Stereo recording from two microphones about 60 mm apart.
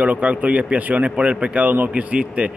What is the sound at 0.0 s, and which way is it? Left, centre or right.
A man's voice, right.